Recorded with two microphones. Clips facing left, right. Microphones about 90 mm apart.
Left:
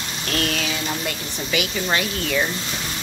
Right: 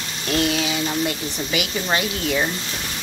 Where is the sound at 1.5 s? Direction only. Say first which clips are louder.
Left 1 dB; 30° right (ahead or behind).